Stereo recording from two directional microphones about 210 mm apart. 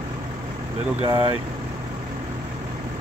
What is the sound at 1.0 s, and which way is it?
Speech, 25° right (ahead or behind).